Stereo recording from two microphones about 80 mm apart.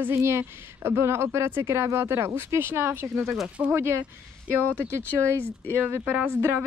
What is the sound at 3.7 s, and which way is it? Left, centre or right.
Speech, right.